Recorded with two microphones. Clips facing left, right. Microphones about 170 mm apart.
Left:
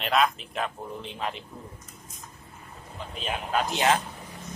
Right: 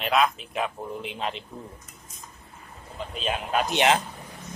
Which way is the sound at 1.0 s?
20° right (ahead or behind).